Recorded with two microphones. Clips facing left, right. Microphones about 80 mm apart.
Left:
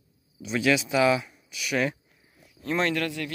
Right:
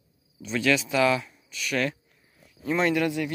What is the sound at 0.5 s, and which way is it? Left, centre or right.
Speech, centre.